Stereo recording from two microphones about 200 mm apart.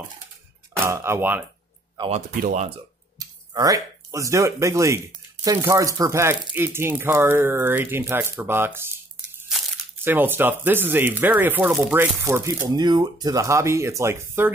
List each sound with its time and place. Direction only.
0.8 s speech: 15° right (ahead or behind)
2.0 s speech: 35° right (ahead or behind)
3.2 s speech: 20° right (ahead or behind)
10.0 s speech: 10° right (ahead or behind)